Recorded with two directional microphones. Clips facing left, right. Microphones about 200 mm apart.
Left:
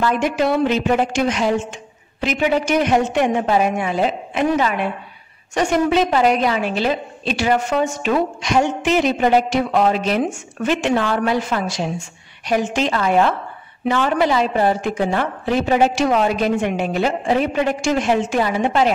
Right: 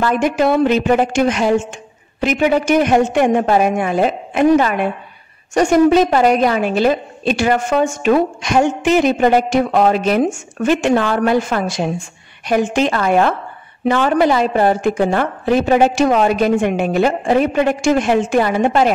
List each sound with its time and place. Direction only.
0.0 s a woman's voice: 50° right (ahead or behind)